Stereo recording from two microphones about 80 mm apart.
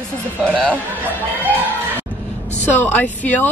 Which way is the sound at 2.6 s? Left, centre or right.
Left.